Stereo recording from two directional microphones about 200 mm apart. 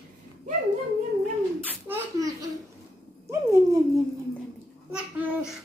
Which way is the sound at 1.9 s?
15° right (ahead or behind).